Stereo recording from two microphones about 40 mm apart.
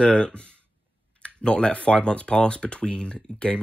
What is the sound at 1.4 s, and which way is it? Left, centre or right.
Speech, left.